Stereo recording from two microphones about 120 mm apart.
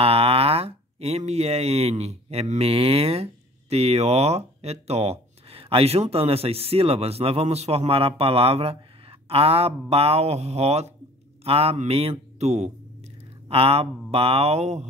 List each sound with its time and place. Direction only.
0.0 s speech: 50° right (ahead or behind); by 2.7 s 70° right (ahead or behind)
2.7 s speech: 55° right (ahead or behind)
13.5 s speech: 50° right (ahead or behind)